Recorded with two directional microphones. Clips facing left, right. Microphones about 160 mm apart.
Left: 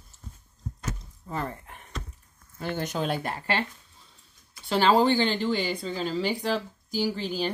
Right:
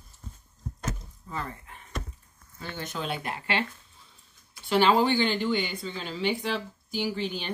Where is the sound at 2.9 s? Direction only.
40° left (ahead or behind).